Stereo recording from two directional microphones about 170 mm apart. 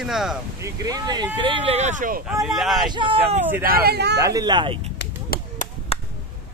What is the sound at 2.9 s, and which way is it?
Speech, 30° right (ahead or behind).